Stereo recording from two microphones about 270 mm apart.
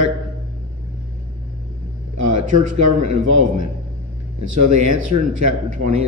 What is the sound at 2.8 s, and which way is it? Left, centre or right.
A man's voice, right.